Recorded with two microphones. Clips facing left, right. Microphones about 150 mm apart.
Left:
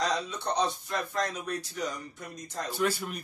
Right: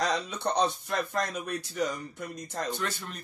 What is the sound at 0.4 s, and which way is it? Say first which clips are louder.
Speech: right 2 dB; 55° right (ahead or behind).